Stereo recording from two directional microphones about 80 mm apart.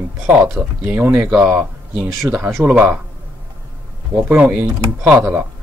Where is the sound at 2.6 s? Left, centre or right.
Centre.